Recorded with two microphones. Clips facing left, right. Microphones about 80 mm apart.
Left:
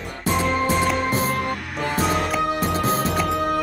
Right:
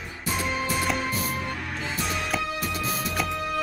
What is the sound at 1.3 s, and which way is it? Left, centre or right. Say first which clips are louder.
Music: left 6 dB; left.